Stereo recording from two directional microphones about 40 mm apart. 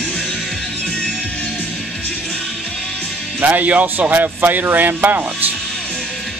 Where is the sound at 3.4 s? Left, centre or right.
Right.